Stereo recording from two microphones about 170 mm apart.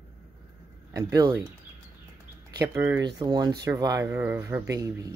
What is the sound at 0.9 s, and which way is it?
Speech, 20° right (ahead or behind).